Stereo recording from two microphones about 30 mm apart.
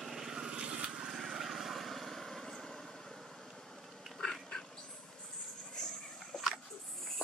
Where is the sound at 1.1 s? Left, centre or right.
Centre.